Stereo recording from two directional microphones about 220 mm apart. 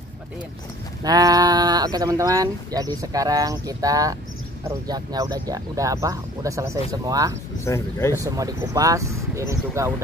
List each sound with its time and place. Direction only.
1.0 s speech: 15° right (ahead or behind)
7.6 s speech: 10° left (ahead or behind)
8.2 s speech: 15° right (ahead or behind)